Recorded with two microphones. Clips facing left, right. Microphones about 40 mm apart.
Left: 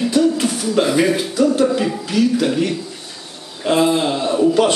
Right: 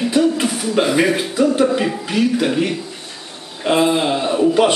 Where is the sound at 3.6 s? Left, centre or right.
Centre.